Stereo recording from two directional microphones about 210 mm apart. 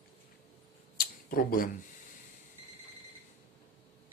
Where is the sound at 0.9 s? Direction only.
45° left (ahead or behind).